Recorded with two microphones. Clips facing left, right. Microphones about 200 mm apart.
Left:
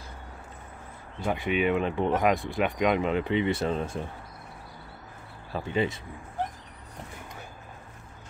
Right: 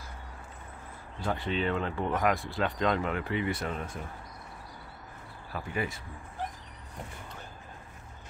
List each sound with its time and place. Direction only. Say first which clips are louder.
1.2 s speech: left 4 dB; 15° left (ahead or behind)
5.5 s speech: left 6 dB; 25° left (ahead or behind)